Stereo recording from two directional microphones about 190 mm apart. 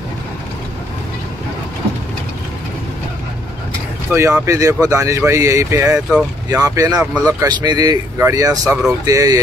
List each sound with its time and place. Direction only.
4.1 s speech: 15° right (ahead or behind)
6.6 s speech: 15° right (ahead or behind)